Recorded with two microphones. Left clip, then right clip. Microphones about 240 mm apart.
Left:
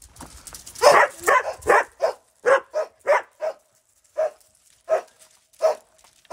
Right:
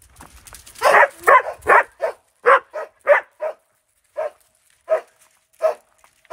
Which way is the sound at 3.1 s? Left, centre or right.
Right.